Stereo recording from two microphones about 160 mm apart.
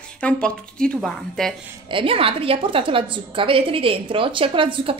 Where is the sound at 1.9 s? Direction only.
35° right (ahead or behind).